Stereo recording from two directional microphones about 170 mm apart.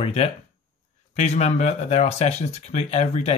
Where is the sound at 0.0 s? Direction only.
40° left (ahead or behind).